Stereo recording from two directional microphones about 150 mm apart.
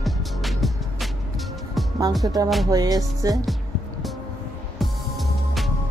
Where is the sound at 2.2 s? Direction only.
25° right (ahead or behind).